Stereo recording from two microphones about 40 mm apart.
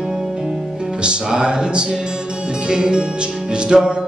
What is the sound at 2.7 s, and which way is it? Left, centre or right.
Mantra, centre.